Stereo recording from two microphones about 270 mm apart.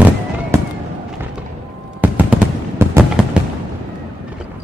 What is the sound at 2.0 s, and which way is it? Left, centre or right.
Fireworks, centre.